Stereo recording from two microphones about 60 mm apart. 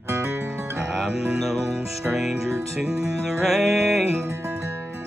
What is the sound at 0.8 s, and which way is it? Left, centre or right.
Music, centre.